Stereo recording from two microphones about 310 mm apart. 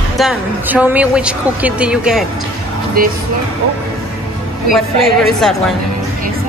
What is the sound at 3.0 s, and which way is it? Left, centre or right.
Speech, right.